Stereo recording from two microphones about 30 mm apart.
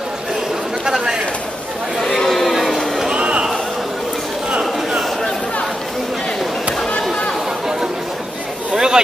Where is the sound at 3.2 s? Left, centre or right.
Right.